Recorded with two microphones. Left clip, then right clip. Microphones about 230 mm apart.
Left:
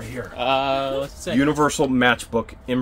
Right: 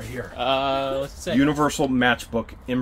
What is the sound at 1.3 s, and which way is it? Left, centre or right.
Groan, centre.